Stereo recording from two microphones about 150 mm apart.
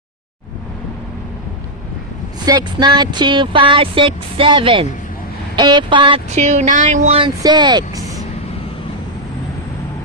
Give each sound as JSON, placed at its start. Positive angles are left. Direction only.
{"t": 2.4, "sound": "speech", "side_deg": -30}
{"t": 6.3, "sound": "speech", "side_deg": -50}
{"t": 7.2, "sound": "speech", "side_deg": -30}